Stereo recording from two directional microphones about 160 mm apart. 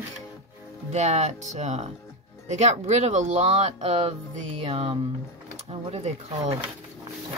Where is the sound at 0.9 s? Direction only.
45° right (ahead or behind).